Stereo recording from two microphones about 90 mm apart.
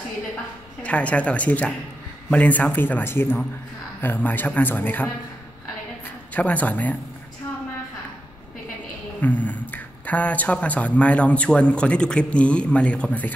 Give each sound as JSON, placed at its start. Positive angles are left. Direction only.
{"t": 0.8, "sound": "a man's voice", "side_deg": 15}
{"t": 6.3, "sound": "speech", "side_deg": 15}
{"t": 9.2, "sound": "speech", "side_deg": 20}